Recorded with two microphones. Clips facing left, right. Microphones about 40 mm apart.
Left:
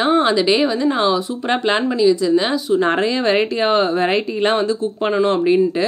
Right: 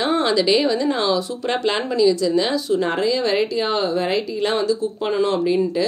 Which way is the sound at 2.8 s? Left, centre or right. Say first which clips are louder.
Left 3 dB; left.